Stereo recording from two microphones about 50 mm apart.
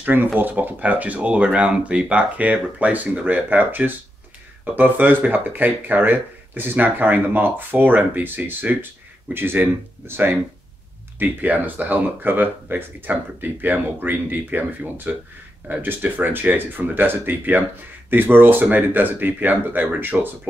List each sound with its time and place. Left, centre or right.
0.0 s speech: right